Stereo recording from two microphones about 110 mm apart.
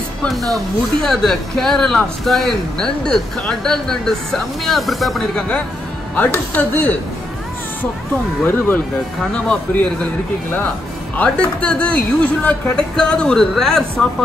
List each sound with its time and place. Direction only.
0.2 s speech: centre (ahead or behind)
6.1 s speech: 15° left (ahead or behind)
8.5 s speech: 20° left (ahead or behind)
11.1 s speech: 10° left (ahead or behind)